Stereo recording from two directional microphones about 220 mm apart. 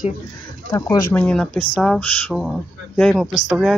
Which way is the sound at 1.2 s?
5° left (ahead or behind).